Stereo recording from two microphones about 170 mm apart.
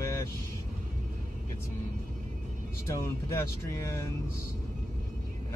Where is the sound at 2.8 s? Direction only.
15° left (ahead or behind).